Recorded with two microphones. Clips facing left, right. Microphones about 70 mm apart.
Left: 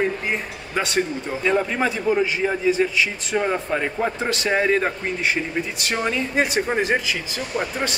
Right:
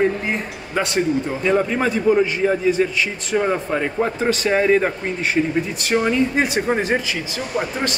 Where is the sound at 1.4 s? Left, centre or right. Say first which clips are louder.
Right 1 dB; centre.